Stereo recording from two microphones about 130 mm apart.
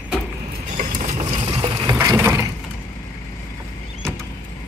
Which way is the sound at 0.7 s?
75° right (ahead or behind).